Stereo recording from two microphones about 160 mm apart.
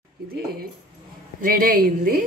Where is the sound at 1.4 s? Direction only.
60° right (ahead or behind).